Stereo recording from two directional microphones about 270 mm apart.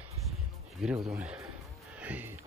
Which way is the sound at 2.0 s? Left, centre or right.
Centre.